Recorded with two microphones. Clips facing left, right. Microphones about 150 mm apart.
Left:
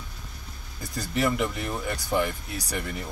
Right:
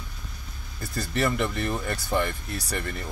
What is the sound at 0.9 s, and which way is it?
Speech, 10° left (ahead or behind).